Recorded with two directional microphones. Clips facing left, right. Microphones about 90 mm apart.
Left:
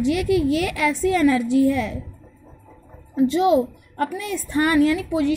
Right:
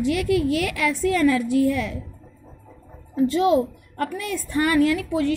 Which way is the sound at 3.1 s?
20° left (ahead or behind).